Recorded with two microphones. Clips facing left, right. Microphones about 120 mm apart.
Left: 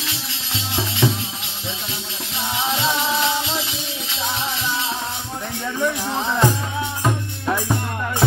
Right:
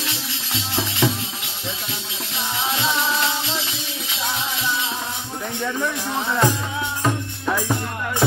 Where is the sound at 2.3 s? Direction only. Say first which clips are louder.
Left 2 dB; centre (ahead or behind).